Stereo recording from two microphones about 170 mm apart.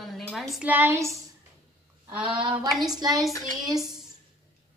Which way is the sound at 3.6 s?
20° right (ahead or behind).